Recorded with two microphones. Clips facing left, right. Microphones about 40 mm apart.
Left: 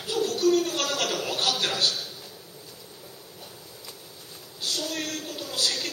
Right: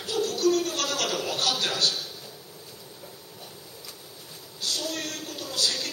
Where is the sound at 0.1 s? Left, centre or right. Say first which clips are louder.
Left 1 dB; left.